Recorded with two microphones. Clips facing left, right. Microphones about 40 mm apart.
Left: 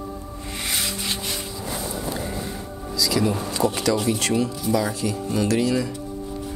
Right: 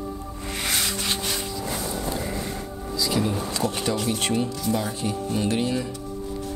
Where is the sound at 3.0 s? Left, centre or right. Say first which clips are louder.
Left 3 dB; left.